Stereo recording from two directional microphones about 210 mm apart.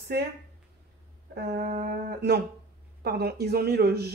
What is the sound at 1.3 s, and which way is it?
Speech, 50° right (ahead or behind).